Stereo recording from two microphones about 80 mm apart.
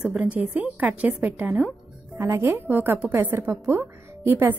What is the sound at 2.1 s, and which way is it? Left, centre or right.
A woman's voice, right.